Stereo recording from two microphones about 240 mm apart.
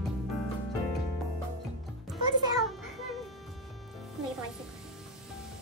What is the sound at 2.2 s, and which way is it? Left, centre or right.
Music, centre.